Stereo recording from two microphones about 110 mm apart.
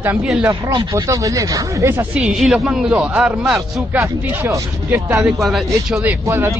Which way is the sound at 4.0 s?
25° right (ahead or behind).